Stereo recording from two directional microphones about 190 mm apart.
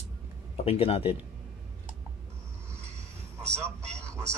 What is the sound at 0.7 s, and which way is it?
Speech, 30° left (ahead or behind).